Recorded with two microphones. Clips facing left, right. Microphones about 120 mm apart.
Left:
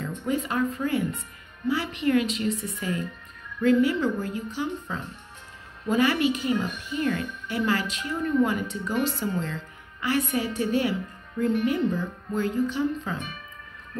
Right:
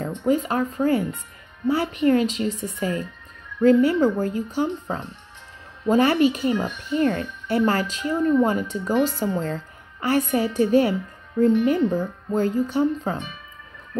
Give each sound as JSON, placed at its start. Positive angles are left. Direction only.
{"t": 0.2, "sound": "a woman's voice", "side_deg": -40}